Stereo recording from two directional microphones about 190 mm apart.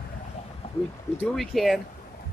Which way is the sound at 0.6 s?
35° left (ahead or behind).